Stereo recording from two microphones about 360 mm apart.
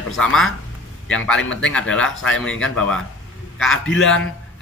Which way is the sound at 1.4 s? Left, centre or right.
Left.